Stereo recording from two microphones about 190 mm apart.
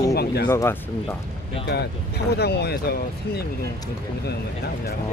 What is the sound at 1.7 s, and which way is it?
Speech, 60° left (ahead or behind).